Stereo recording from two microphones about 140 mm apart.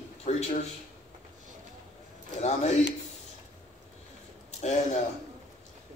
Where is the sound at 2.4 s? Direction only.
50° left (ahead or behind).